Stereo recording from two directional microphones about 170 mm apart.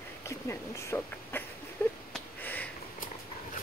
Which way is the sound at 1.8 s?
15° left (ahead or behind).